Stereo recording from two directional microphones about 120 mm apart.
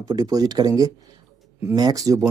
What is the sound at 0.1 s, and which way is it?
Speech, 30° right (ahead or behind).